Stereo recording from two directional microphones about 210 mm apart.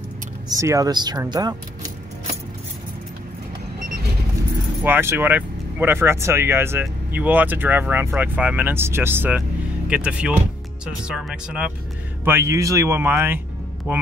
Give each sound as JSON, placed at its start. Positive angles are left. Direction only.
{"t": 0.5, "sound": "speech", "side_deg": -15}
{"t": 4.8, "sound": "speech", "side_deg": -10}